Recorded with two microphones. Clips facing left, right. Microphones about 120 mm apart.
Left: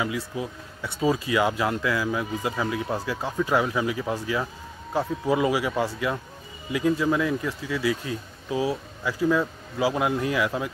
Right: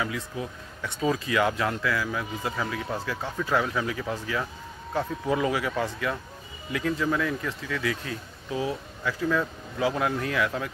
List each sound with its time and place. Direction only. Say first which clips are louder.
0.0 s speech: left 3 dB; 10° left (ahead or behind)